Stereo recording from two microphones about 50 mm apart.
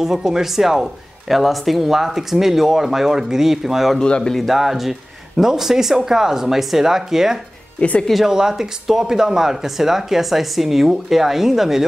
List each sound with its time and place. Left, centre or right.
0.0 s speech: centre
4.0 s speech: centre
4.4 s speech: centre